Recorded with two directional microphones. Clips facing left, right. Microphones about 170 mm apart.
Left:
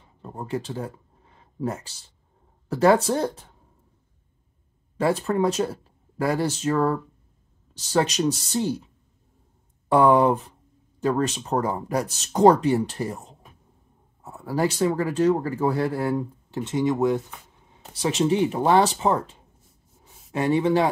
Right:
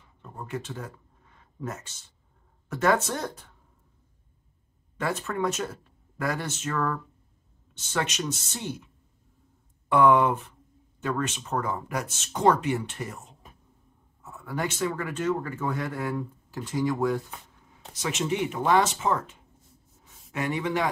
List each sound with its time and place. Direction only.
0.2 s a sound: 35° left (ahead or behind)
2.7 s speech: 30° left (ahead or behind)
4.9 s speech: 30° left (ahead or behind)
17.9 s speech: 35° left (ahead or behind)